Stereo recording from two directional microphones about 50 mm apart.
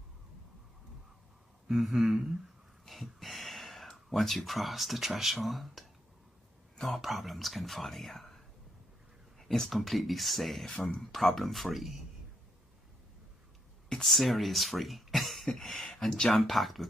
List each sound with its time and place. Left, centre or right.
1.7 s speech: centre
9.4 s speech: centre
14.0 s speech: centre